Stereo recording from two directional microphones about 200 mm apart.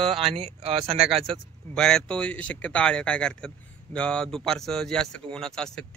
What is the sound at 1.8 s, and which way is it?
Speech, 5° left (ahead or behind).